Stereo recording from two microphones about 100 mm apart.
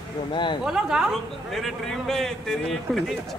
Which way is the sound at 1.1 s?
5° left (ahead or behind).